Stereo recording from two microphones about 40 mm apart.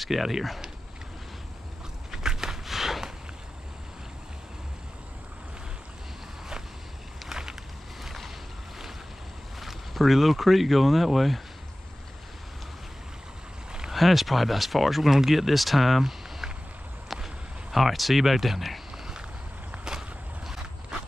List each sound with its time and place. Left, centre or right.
0.0 s speech: centre
2.0 s a sound: centre
7.2 s vehicle: centre
8.0 s boat: centre
9.6 s speech: centre
13.9 s speech: centre
16.0 s a sound: centre
17.1 s speech: centre
19.8 s walk: centre